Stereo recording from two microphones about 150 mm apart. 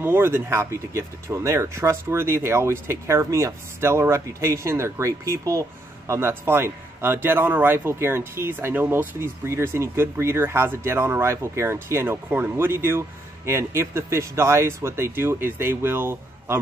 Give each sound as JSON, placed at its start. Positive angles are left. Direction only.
{"t": 0.0, "sound": "speech", "side_deg": -15}